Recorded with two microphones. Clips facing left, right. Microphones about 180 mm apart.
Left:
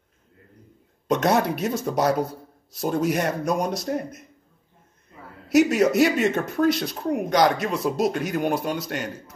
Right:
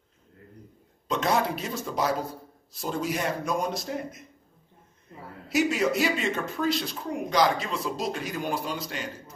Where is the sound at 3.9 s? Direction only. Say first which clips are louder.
Left 6 dB; 55° left (ahead or behind).